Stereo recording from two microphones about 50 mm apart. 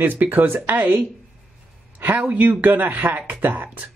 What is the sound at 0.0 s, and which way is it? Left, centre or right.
Speech, right.